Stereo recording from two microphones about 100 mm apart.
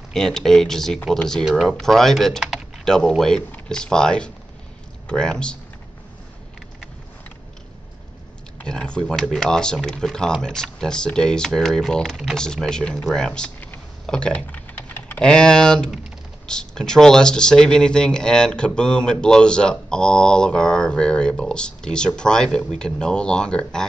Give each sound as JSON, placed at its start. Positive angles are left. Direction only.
{"t": 0.1, "sound": "speech", "side_deg": 5}
{"t": 1.4, "sound": "speech", "side_deg": -5}
{"t": 8.5, "sound": "speech", "side_deg": 10}
{"t": 14.0, "sound": "typing", "side_deg": 10}
{"t": 15.2, "sound": "speech", "side_deg": 10}